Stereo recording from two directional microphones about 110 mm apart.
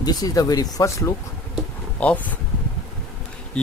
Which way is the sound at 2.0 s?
15° left (ahead or behind).